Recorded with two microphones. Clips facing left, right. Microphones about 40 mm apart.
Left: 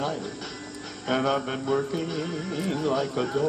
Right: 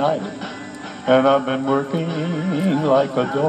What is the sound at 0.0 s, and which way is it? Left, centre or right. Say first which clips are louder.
Speech: right 10 dB; right.